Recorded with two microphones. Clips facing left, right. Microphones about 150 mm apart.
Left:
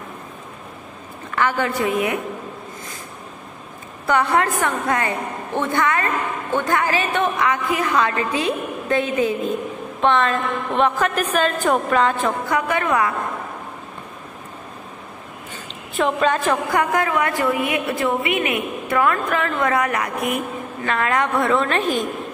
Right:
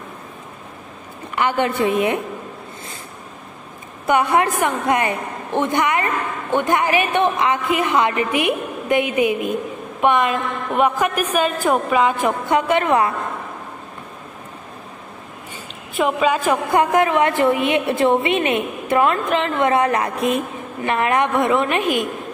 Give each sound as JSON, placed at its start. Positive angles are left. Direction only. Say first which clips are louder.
{"t": 1.3, "sound": "a woman's voice", "louder": "right 2 dB", "side_deg": -20}
{"t": 4.0, "sound": "a woman's voice", "louder": "right 2 dB", "side_deg": -20}
{"t": 12.4, "sound": "a woman's voice", "louder": "right 6 dB", "side_deg": -25}
{"t": 16.0, "sound": "a woman's voice", "louder": "right 1 dB", "side_deg": -5}
{"t": 16.7, "sound": "a woman's voice", "louder": "right 7 dB", "side_deg": -20}